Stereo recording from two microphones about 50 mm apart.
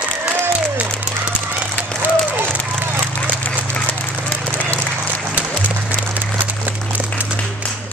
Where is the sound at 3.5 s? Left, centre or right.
Left.